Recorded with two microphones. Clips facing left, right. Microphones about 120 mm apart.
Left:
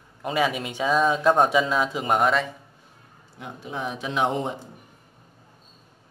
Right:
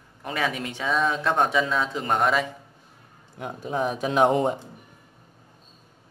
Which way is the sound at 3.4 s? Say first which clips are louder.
Right 5 dB; 40° right (ahead or behind).